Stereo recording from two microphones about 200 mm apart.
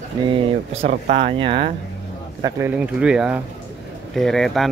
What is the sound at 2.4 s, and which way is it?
Speech, 15° right (ahead or behind).